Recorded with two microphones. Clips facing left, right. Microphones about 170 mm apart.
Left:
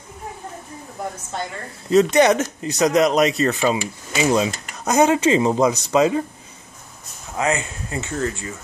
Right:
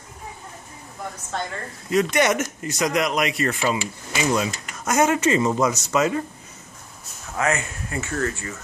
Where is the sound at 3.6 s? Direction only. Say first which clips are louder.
Left 3 dB; 20° left (ahead or behind).